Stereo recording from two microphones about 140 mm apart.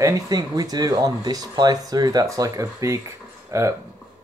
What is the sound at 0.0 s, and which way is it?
Speech, 25° right (ahead or behind).